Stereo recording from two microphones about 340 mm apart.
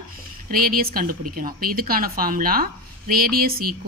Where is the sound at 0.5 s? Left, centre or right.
Right.